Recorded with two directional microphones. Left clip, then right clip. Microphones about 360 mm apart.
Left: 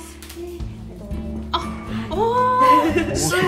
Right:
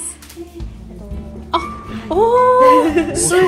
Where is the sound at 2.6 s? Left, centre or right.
Centre.